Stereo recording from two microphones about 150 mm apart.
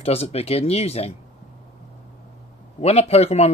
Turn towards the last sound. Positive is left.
turn(degrees=45)  # may be behind; listen again after turning